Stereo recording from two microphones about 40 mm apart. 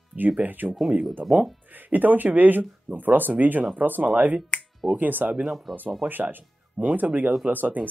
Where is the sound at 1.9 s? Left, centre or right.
Right.